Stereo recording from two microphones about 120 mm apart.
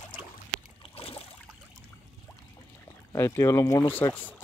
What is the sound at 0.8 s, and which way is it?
Boat, 55° left (ahead or behind).